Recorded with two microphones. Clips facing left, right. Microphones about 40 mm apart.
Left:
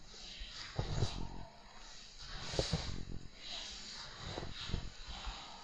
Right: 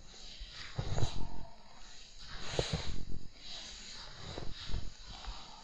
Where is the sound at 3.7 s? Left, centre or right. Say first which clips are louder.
Even; right.